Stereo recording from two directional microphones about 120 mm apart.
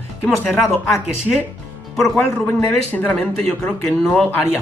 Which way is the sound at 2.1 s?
20° left (ahead or behind).